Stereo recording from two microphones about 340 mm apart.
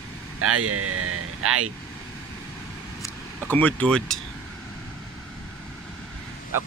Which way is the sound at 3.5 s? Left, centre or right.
Centre.